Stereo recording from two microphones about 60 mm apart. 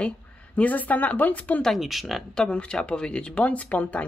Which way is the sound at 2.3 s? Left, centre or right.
Centre.